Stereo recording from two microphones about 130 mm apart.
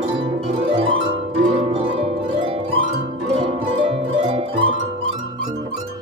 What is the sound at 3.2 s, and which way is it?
Music, 50° right (ahead or behind).